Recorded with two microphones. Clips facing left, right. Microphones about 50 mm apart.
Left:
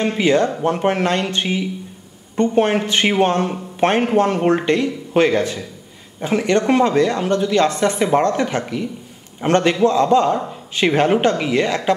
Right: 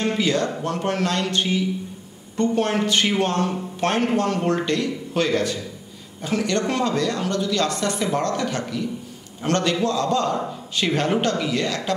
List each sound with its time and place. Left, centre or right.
0.2 s speech: left